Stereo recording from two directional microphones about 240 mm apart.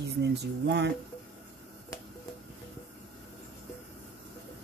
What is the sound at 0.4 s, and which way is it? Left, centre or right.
Speech, right.